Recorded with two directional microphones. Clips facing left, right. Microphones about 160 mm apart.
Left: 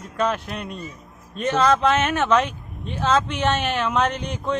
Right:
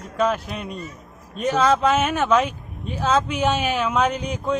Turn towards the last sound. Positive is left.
turn(degrees=0)  # may be behind; listen again after turning